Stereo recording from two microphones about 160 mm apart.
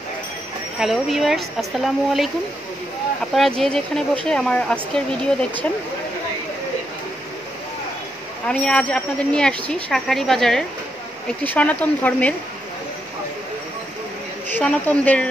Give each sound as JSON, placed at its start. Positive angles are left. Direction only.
{"t": 0.7, "sound": "speech", "side_deg": 0}
{"t": 3.3, "sound": "speech", "side_deg": 0}
{"t": 8.5, "sound": "speech", "side_deg": 5}
{"t": 14.5, "sound": "speech", "side_deg": 10}